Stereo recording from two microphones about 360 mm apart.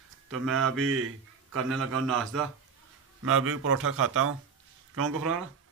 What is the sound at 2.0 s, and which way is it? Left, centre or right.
Speech, centre.